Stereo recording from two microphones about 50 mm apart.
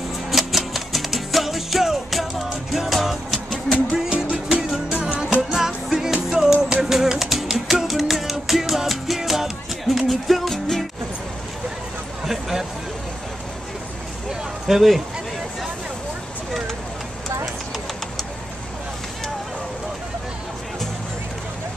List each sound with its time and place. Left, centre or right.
0.3 s music: centre
4.1 s music: right
5.5 s music: centre
12.3 s music: centre
14.7 s speech: centre